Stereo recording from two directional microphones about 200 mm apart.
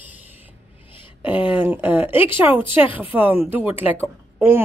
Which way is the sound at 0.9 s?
25° left (ahead or behind).